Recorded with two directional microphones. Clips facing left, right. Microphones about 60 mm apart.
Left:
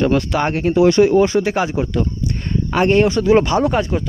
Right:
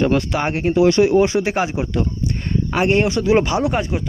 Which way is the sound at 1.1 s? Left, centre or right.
Centre.